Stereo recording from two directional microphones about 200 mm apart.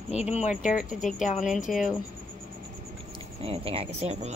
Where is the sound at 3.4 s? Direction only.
30° right (ahead or behind).